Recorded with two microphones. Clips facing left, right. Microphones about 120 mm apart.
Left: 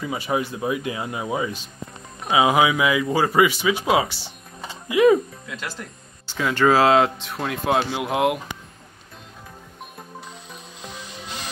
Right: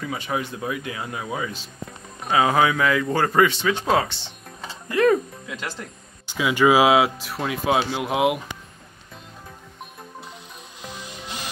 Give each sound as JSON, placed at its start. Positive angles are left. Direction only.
{"t": 0.0, "sound": "speech", "side_deg": 10}
{"t": 6.2, "sound": "speech", "side_deg": -10}